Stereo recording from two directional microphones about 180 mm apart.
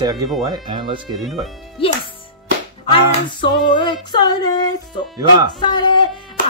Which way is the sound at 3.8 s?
25° left (ahead or behind).